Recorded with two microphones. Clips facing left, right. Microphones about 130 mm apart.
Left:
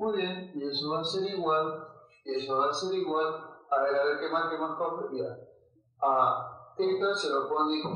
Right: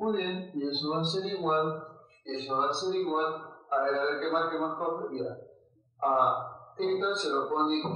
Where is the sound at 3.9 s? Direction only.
20° left (ahead or behind).